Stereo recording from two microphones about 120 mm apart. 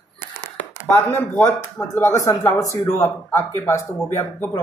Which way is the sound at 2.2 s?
25° left (ahead or behind).